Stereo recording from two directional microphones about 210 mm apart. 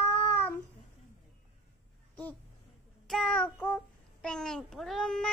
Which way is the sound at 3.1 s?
Centre (ahead or behind).